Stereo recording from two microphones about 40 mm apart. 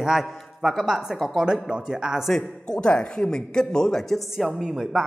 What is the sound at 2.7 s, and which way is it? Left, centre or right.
Speech, left.